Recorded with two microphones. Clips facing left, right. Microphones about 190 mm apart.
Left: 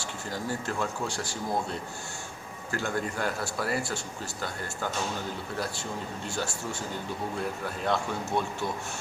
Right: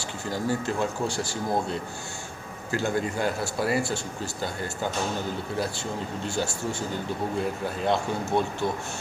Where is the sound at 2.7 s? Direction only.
30° right (ahead or behind).